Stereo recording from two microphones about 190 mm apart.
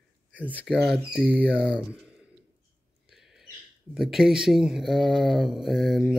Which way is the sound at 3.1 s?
Centre (ahead or behind).